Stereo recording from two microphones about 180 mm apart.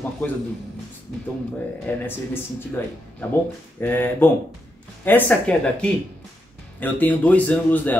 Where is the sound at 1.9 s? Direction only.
10° left (ahead or behind).